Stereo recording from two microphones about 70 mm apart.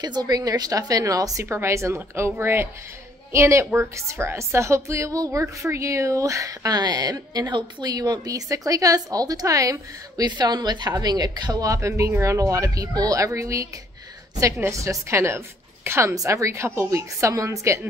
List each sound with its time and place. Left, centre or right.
0.0 s a woman's voice: right
1.4 s a woman's voice: right
10.2 s a woman's voice: right
11.6 s a woman's voice: right